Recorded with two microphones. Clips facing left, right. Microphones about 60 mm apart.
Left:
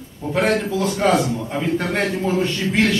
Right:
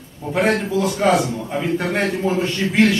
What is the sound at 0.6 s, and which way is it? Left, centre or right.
A man's voice, centre.